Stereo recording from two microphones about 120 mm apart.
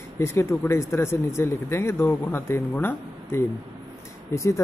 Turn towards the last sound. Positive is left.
turn(degrees=25)  # may be behind; listen again after turning